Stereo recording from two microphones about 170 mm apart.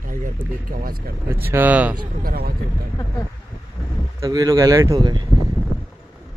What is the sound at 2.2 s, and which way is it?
Speech, 60° right (ahead or behind).